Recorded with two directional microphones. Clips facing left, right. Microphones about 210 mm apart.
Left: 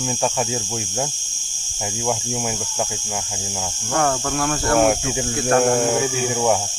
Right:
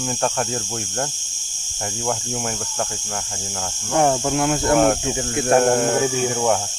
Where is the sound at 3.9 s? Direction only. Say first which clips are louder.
Right 3 dB; 20° right (ahead or behind).